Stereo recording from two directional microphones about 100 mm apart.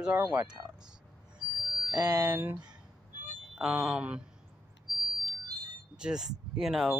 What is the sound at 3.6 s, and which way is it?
Speech, 5° right (ahead or behind).